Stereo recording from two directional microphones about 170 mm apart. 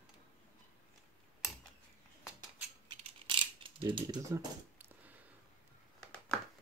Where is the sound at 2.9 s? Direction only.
35° right (ahead or behind).